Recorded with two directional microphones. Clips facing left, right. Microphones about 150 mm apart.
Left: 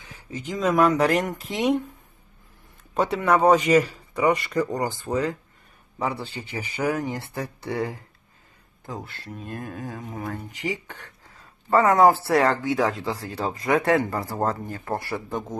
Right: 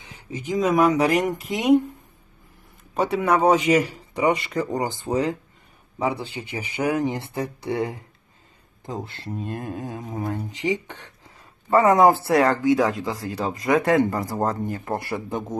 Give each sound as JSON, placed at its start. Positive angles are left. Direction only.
{"t": 0.5, "sound": "speech", "side_deg": -10}
{"t": 2.9, "sound": "speech", "side_deg": -10}